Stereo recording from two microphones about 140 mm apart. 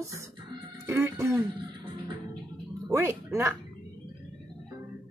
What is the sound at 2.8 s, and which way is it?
Speech, 20° right (ahead or behind).